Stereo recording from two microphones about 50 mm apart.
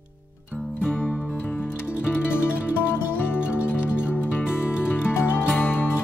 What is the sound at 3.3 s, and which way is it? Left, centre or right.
Music, right.